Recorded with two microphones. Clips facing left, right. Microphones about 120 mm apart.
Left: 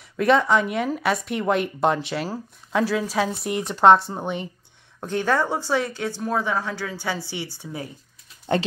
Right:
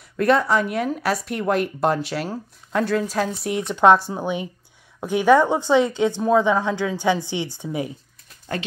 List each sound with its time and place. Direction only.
0.2 s speech: centre (ahead or behind)
5.0 s a woman's voice: 15° right (ahead or behind)